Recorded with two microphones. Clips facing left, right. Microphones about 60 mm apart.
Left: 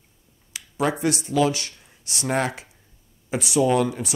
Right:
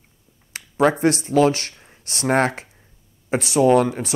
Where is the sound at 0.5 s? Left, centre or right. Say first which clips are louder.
Right 6 dB; right.